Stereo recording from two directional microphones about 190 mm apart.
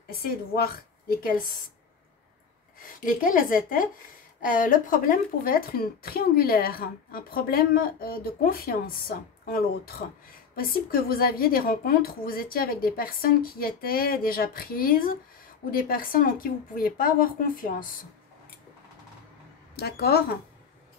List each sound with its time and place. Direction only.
0.1 s a woman's voice: 55° left (ahead or behind)
2.8 s speech: 45° left (ahead or behind)
19.7 s speech: 55° left (ahead or behind)